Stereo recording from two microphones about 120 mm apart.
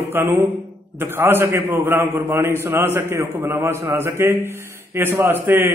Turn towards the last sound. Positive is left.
turn(degrees=-20)  # may be behind; listen again after turning